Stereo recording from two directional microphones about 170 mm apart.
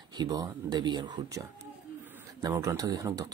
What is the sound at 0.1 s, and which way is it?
Speech, 25° right (ahead or behind).